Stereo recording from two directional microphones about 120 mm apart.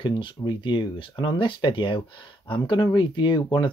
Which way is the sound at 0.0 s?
40° left (ahead or behind).